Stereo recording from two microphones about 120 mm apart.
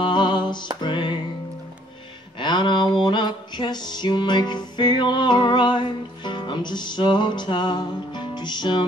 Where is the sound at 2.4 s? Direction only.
40° left (ahead or behind).